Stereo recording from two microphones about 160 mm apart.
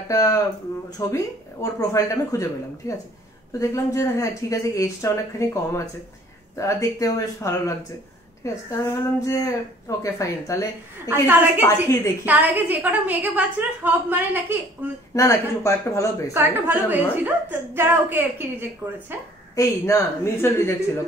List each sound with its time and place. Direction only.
0.1 s speech: 20° left (ahead or behind)
11.1 s a woman's voice: 10° right (ahead or behind)
11.6 s a woman's voice: 15° left (ahead or behind)
12.3 s a woman's voice: 10° right (ahead or behind)
15.1 s speech: 20° left (ahead or behind)
16.3 s a woman's voice: 10° right (ahead or behind)
19.5 s a woman's voice: 20° left (ahead or behind)